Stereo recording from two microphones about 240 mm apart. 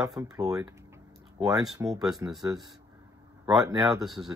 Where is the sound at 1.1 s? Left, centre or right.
Centre.